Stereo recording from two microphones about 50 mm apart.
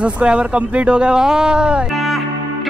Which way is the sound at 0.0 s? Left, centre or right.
Right.